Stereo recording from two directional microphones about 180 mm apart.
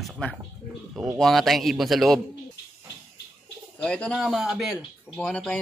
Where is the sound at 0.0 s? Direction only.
5° left (ahead or behind).